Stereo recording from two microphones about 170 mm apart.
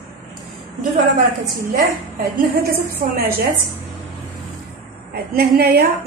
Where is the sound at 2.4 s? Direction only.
60° right (ahead or behind).